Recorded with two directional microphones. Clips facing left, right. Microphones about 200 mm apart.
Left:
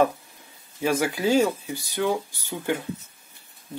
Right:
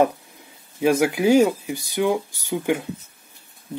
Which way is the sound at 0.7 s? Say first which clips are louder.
Right 5 dB; 15° right (ahead or behind).